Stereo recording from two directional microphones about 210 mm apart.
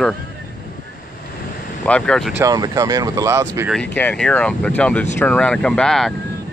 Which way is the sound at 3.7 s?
5° left (ahead or behind).